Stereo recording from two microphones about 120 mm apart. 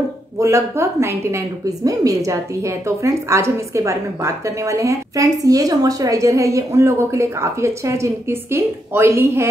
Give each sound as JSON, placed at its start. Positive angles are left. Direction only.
{"t": 0.4, "sound": "a woman's voice", "side_deg": -25}